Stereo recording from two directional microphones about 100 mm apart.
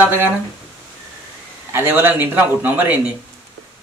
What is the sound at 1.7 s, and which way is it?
A man's voice, 20° right (ahead or behind).